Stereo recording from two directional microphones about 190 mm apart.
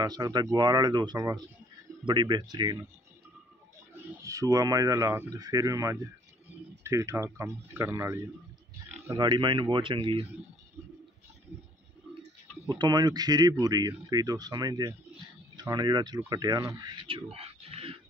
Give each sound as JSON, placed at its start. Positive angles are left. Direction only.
{"t": 0.0, "sound": "speech", "side_deg": -20}
{"t": 3.9, "sound": "speech", "side_deg": -15}
{"t": 12.6, "sound": "speech", "side_deg": -20}